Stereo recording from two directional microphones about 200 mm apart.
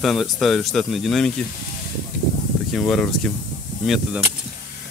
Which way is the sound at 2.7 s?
Centre (ahead or behind).